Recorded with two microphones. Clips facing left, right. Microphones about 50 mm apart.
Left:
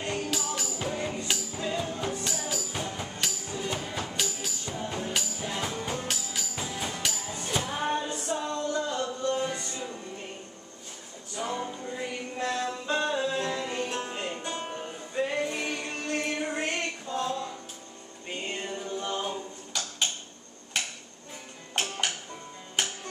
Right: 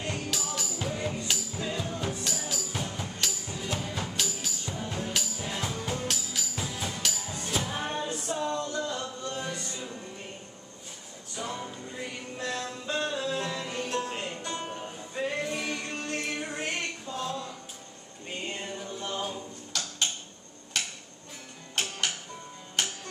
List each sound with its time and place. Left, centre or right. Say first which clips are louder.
0.0 s music: left 2 dB; centre
11.3 s music: left 3 dB; centre
18.4 s a capella: left 2 dB; centre